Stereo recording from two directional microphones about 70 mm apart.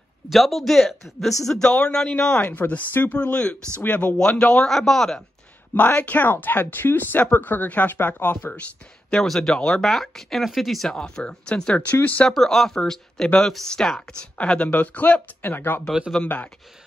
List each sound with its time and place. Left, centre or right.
0.3 s speech: centre; by 4.1 s left
4.2 s speech: centre
5.8 s speech: left
9.1 s speech: centre; by 12.3 s left
12.3 s speech: centre; by 16.4 s left